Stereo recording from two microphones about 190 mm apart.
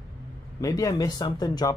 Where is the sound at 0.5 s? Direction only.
20° left (ahead or behind).